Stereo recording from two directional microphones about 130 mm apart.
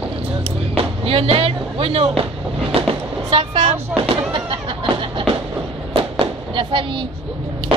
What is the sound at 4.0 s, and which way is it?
Music, 40° right (ahead or behind).